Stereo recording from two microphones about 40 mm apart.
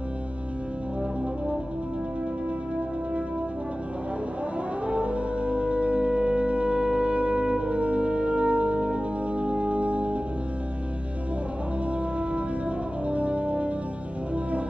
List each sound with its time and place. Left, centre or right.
4.8 s music: right
13.0 s brass instrument: right